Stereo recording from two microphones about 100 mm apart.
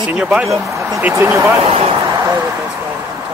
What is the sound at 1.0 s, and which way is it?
Speech, 20° right (ahead or behind).